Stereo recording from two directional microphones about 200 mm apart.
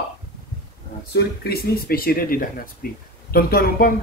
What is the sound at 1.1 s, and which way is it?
A man's voice, 50° left (ahead or behind).